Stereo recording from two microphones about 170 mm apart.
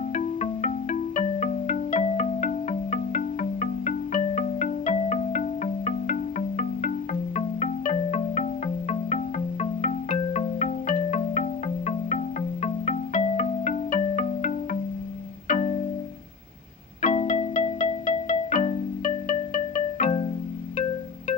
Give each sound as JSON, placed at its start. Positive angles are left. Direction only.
{"t": 0.1, "sound": "music", "side_deg": 45}
{"t": 17.0, "sound": "music", "side_deg": 45}